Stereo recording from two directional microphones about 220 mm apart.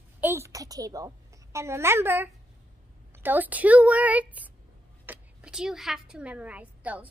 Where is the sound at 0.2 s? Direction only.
10° right (ahead or behind).